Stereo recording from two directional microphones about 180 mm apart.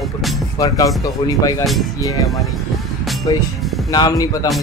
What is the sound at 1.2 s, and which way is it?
Speech, 25° left (ahead or behind).